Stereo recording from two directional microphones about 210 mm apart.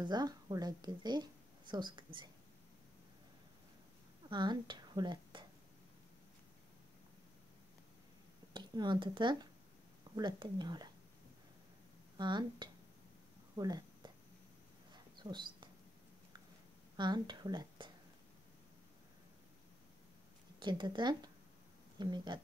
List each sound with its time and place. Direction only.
0.0 s speech: 20° right (ahead or behind)
4.3 s a woman's voice: 20° right (ahead or behind)
8.5 s speech: 20° right (ahead or behind)
12.2 s speech: 20° right (ahead or behind)
13.6 s a sound: 20° right (ahead or behind)
14.9 s dog: 20° right (ahead or behind)
16.9 s speech: 20° right (ahead or behind)
20.5 s speech: 20° right (ahead or behind)